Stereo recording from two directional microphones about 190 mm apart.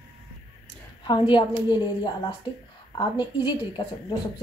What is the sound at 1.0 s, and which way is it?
Speech, 25° left (ahead or behind).